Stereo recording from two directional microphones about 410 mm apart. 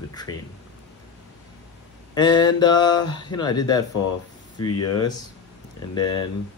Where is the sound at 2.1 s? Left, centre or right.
Centre.